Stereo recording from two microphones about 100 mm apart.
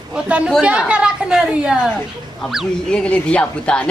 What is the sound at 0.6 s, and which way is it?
A woman's voice, 10° right (ahead or behind).